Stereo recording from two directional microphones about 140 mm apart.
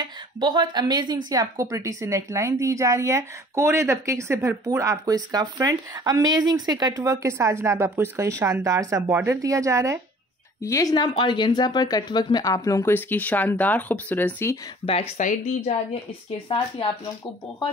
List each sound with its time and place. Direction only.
0.0 s a woman's voice: 30° right (ahead or behind)
10.6 s speech: 25° left (ahead or behind)
14.9 s speech: 45° left (ahead or behind)
15.1 s a woman's voice: 60° left (ahead or behind)
16.4 s speech: 35° left (ahead or behind)